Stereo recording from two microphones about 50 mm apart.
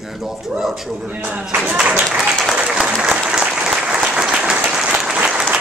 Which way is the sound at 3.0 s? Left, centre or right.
Centre.